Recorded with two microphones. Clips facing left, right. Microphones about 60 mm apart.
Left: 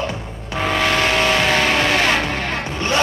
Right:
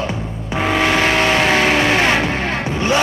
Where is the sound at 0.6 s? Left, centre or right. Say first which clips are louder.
Right 2 dB; centre.